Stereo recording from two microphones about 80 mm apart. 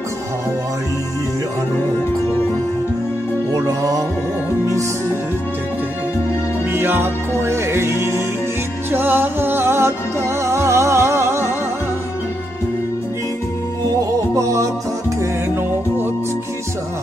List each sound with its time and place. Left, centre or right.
3.5 s music: right
6.7 s music: right
8.9 s music: right
13.9 s music: right